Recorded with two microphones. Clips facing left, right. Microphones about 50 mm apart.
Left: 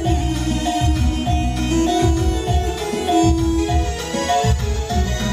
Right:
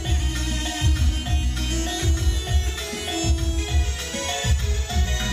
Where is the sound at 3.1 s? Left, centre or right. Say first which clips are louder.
Left 14 dB; left.